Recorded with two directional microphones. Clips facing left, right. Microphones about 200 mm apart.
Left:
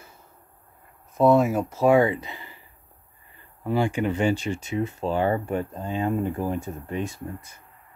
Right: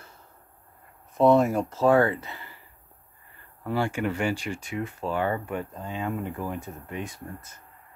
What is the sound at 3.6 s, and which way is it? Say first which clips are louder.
Speech: left 3 dB; 15° left (ahead or behind).